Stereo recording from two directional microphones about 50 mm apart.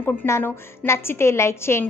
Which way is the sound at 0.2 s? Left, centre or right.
Left.